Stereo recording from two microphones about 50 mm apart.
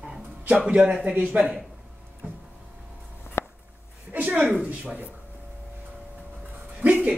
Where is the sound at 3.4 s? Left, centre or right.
Left.